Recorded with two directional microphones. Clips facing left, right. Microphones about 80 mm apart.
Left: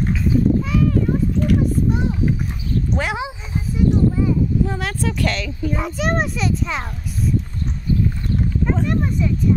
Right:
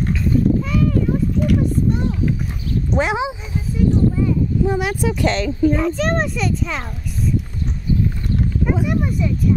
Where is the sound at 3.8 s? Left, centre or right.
Centre.